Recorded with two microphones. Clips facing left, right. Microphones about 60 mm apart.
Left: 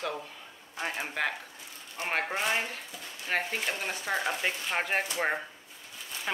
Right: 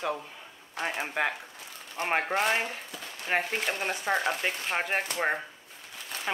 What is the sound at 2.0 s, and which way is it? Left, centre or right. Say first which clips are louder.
Speech: right 4 dB; right.